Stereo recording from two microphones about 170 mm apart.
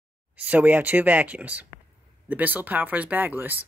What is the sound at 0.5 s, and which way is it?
Speech, 10° right (ahead or behind).